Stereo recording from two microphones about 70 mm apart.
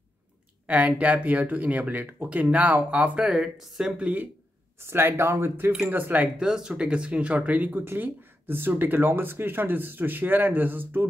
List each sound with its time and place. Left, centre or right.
0.7 s speech: centre
3.3 s speech: centre
4.0 s speech: right
4.7 s speech: right
5.9 s speech: right
6.2 s speech: centre; by 11.1 s right